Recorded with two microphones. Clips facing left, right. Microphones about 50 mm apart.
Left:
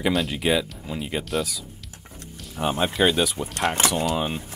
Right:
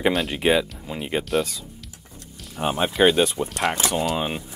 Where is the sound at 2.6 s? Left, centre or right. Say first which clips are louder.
Even; centre.